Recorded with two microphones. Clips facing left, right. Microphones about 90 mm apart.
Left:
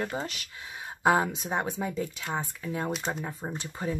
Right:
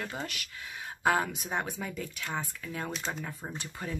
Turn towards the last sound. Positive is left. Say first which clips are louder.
# left 5 dB
turn(degrees=20)  # may be behind; listen again after turning